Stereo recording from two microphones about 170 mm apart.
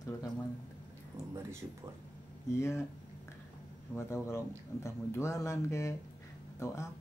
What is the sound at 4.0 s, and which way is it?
Speech, 15° left (ahead or behind).